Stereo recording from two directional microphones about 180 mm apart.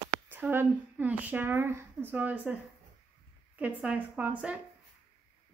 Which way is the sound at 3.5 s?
5° right (ahead or behind).